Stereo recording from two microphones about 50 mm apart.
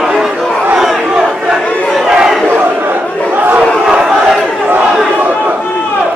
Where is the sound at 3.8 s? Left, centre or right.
Centre.